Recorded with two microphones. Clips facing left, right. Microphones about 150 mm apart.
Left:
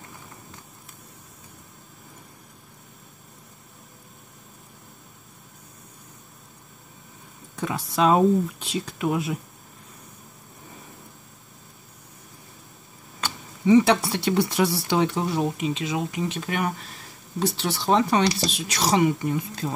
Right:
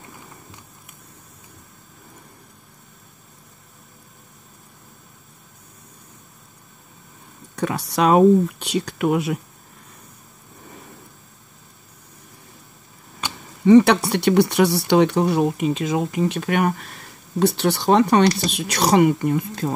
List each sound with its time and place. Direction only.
7.5 s speech: 70° right (ahead or behind)
13.7 s speech: 65° right (ahead or behind)